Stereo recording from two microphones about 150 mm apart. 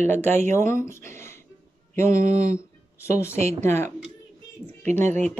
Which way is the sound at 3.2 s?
15° left (ahead or behind).